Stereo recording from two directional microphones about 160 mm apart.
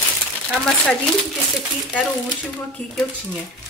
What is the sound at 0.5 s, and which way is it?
Speech, centre (ahead or behind).